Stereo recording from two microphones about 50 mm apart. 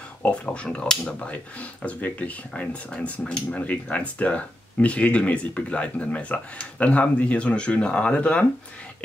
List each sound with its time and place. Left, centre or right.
0.3 s speech: left
1.9 s speech: left